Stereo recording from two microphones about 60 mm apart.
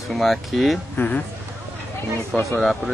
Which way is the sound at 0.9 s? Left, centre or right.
Left.